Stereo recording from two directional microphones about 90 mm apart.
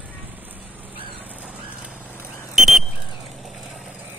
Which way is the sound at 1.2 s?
15° right (ahead or behind).